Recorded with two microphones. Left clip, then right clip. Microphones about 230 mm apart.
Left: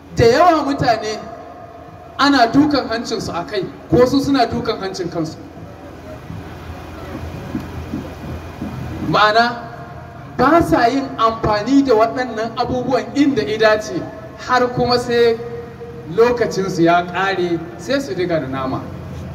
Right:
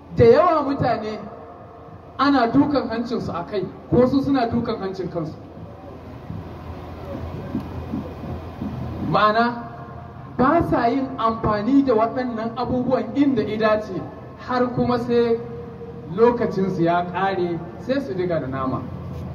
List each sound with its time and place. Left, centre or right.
0.1 s a woman's voice: left
2.1 s a woman's voice: left
9.1 s a woman's voice: left